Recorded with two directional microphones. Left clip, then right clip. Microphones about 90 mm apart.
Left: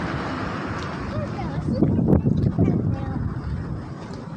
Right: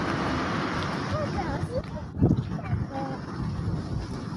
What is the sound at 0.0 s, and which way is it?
Vehicle, 35° right (ahead or behind).